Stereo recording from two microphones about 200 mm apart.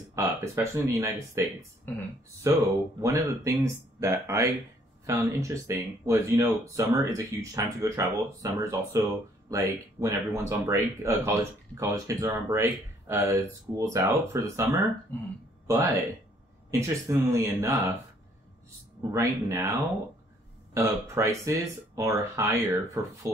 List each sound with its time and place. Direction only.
0.1 s speech: 15° right (ahead or behind)
1.9 s speech: 10° left (ahead or behind)
2.4 s speech: 15° right (ahead or behind)
15.1 s speech: 10° left (ahead or behind)
15.6 s speech: 15° right (ahead or behind)
19.1 s speech: 15° right (ahead or behind)